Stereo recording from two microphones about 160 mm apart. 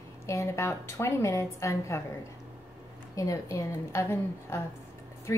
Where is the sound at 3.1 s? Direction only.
20° left (ahead or behind).